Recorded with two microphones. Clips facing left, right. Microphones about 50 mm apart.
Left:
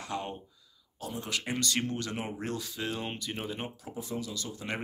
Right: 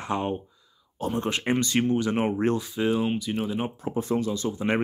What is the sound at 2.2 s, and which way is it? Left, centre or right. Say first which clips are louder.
Speech: right 12 dB; right.